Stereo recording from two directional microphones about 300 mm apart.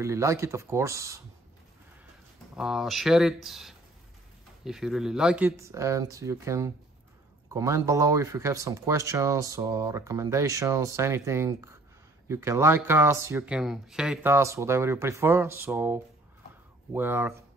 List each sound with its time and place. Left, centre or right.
0.0 s speech: centre
2.5 s speech: centre